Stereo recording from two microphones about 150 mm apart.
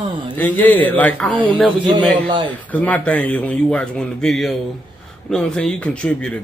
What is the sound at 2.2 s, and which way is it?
Speech, 35° right (ahead or behind).